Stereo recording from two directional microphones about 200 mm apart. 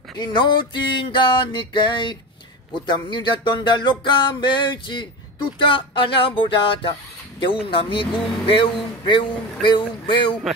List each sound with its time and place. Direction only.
0.2 s speech: 20° left (ahead or behind)